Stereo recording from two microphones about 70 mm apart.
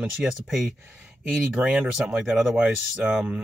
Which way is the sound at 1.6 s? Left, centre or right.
Centre.